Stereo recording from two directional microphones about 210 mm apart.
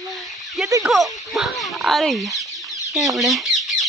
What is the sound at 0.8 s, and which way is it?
Speech, centre (ahead or behind).